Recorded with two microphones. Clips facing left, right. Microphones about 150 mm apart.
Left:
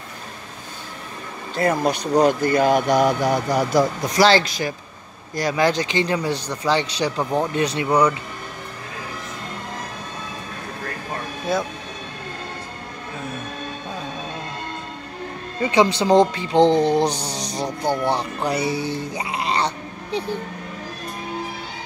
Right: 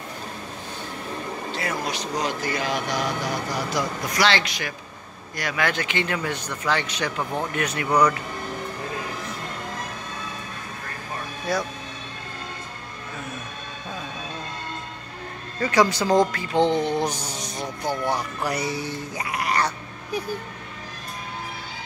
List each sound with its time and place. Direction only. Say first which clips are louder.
1.6 s speech: left 11 dB; 50° left (ahead or behind)
4.2 s speech: left 7 dB; 35° left (ahead or behind)
11.5 s speech: left 3 dB; 25° left (ahead or behind)
15.6 s speech: left 3 dB; 25° left (ahead or behind)